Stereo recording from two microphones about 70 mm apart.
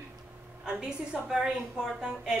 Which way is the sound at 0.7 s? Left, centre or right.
Centre.